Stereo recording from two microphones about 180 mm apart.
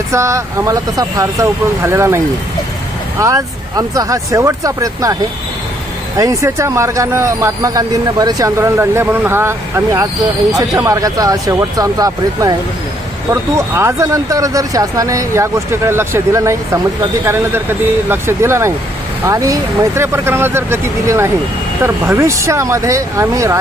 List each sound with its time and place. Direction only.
0.1 s speech: 15° right (ahead or behind)
6.1 s speech: 15° right (ahead or behind)